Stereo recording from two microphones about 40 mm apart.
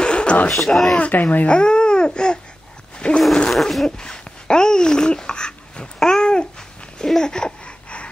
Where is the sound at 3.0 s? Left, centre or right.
Left.